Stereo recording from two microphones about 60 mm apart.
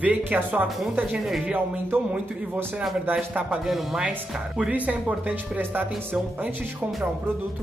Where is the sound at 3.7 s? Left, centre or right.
Centre.